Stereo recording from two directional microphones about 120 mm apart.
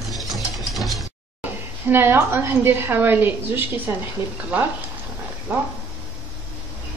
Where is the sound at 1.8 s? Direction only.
20° right (ahead or behind).